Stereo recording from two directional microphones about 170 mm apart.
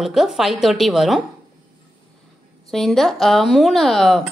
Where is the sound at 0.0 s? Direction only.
Centre (ahead or behind).